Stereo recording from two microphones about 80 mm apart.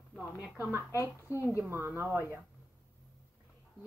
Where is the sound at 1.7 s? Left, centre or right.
Right.